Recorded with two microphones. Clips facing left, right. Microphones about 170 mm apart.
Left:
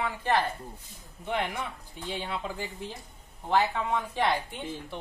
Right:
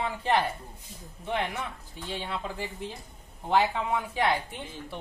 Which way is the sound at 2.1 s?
5° left (ahead or behind).